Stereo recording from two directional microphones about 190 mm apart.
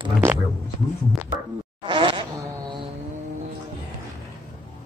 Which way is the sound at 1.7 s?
25° right (ahead or behind).